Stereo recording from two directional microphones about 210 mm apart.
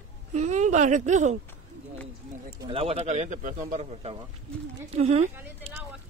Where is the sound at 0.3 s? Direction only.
35° right (ahead or behind).